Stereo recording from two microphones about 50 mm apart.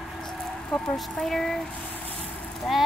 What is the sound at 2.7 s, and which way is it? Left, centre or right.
Speech, centre.